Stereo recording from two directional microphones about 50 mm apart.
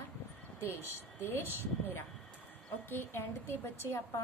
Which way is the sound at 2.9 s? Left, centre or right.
Left.